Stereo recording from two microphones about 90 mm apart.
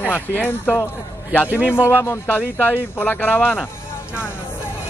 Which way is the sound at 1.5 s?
15° right (ahead or behind).